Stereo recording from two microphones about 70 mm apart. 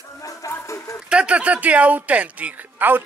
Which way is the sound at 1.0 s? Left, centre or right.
Centre.